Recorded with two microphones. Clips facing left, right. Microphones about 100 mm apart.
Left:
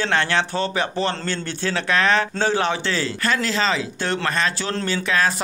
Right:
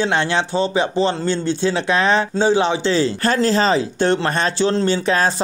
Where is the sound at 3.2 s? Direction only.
35° right (ahead or behind).